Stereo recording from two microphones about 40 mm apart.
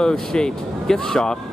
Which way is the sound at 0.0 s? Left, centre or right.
Centre.